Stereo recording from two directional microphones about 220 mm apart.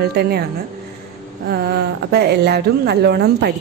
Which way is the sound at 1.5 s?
45° right (ahead or behind).